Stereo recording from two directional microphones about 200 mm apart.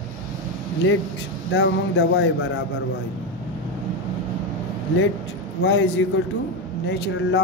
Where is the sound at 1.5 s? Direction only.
70° left (ahead or behind).